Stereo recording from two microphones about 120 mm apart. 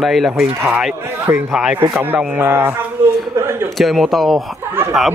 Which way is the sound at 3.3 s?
20° right (ahead or behind).